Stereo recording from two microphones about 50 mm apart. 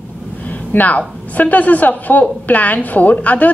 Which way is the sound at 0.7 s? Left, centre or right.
Left.